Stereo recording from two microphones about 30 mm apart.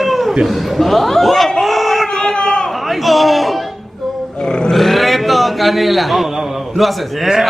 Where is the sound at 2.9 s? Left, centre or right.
Centre.